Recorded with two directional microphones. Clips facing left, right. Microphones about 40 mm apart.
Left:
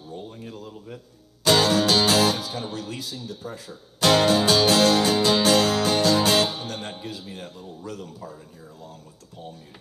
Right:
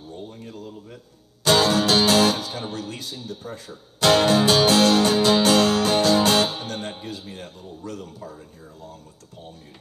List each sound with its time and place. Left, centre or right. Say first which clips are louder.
0.4 s a sound: right 1 dB; centre
1.4 s music: right 1 dB; right
3.0 s speech: even; right
4.2 s music: right 1 dB; right
7.2 s speech: even; centre